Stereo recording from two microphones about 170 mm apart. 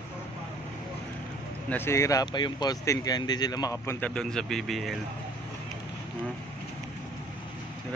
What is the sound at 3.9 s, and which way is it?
Speech, 5° left (ahead or behind).